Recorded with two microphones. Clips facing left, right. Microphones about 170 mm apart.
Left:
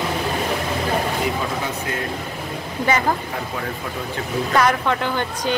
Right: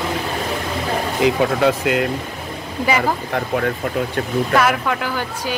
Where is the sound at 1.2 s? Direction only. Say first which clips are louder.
Right 7 dB; 80° right.